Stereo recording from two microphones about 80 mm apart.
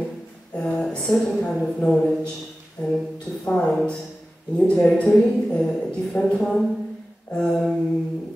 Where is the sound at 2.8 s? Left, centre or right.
Centre.